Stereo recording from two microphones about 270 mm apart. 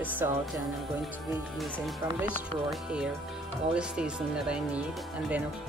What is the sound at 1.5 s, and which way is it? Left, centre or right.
Speech, centre.